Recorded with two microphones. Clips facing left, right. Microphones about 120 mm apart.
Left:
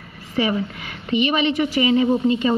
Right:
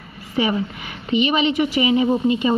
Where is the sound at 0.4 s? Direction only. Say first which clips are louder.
Right 1 dB; 20° right (ahead or behind).